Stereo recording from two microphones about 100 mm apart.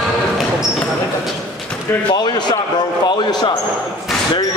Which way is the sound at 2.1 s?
45° left (ahead or behind).